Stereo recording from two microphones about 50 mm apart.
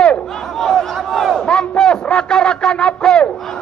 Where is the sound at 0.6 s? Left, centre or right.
Centre.